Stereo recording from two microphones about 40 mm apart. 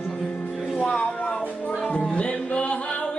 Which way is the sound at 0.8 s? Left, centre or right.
Left.